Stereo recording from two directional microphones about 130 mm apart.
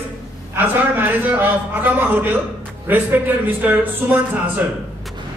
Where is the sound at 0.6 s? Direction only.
15° right (ahead or behind).